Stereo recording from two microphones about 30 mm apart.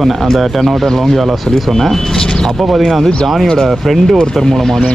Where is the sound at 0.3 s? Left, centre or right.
Centre.